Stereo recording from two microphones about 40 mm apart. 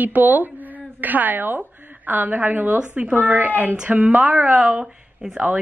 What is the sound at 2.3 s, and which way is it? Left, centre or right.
Speech, right.